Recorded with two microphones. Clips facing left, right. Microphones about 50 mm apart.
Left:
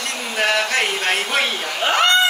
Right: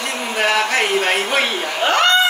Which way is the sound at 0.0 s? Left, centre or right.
Centre.